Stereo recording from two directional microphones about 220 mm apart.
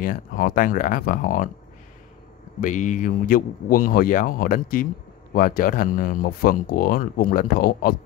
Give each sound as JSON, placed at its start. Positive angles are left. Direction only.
{"t": 0.0, "sound": "speech", "side_deg": 40}
{"t": 2.6, "sound": "speech", "side_deg": 35}